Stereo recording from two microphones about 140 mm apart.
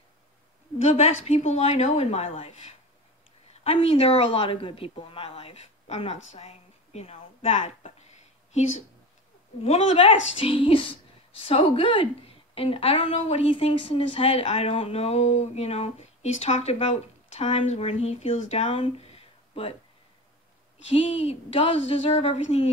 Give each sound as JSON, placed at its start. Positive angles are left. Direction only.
{"t": 0.7, "sound": "speech", "side_deg": 50}
{"t": 20.9, "sound": "speech", "side_deg": 45}